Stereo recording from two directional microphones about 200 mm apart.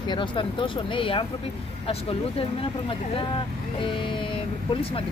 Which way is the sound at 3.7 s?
25° left (ahead or behind).